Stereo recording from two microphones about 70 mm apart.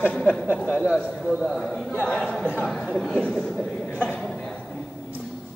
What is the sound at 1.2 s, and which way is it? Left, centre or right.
A man's voice, centre.